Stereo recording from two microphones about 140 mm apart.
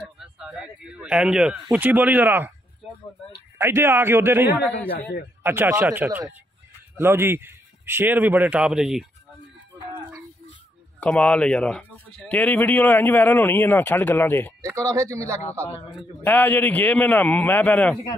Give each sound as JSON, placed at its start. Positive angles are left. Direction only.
{"t": 0.2, "sound": "speech", "side_deg": -5}
{"t": 3.5, "sound": "speech", "side_deg": -15}
{"t": 11.0, "sound": "speech", "side_deg": 10}
{"t": 14.6, "sound": "a man's voice", "side_deg": -20}
{"t": 16.2, "sound": "speech", "side_deg": 15}